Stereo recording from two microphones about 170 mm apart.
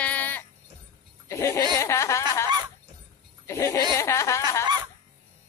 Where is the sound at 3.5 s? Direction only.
15° left (ahead or behind).